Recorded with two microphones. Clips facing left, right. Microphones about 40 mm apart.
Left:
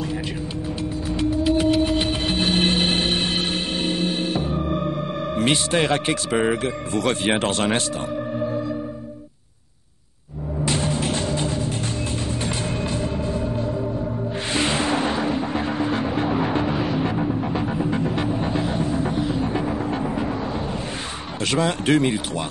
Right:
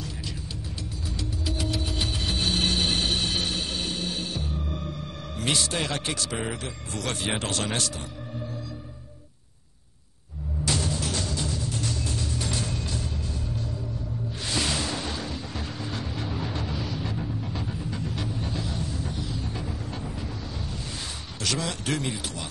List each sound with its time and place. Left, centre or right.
1.3 s vehicle: left
6.9 s speech: left
7.3 s speech: left
10.6 s music: left
21.5 s speech: left